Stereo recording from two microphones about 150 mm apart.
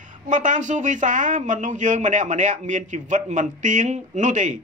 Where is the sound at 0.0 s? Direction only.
60° right (ahead or behind).